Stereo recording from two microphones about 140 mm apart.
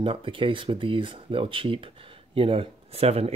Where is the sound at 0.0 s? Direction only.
40° right (ahead or behind).